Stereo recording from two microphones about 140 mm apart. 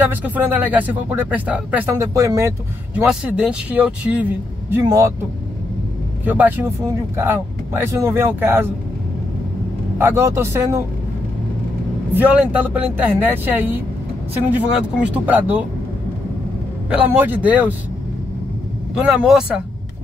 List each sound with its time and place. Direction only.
0.0 s speech: 15° right (ahead or behind)
2.0 s a man's voice: 20° right (ahead or behind)
3.0 s speech: 5° right (ahead or behind)
4.8 s a man's voice: 25° right (ahead or behind)
6.2 s speech: 10° right (ahead or behind)
9.9 s a man's voice: 15° right (ahead or behind)
12.1 s speech: 10° right (ahead or behind)
16.9 s speech: 10° right (ahead or behind)
18.9 s speech: 5° right (ahead or behind)